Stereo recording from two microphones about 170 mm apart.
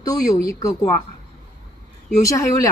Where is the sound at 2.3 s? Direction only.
20° left (ahead or behind).